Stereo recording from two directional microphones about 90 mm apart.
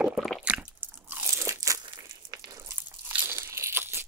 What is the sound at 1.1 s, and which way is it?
Crunch, 25° right (ahead or behind).